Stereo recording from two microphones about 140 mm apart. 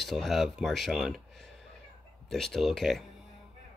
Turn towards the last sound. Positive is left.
turn(degrees=0)  # may be behind; listen again after turning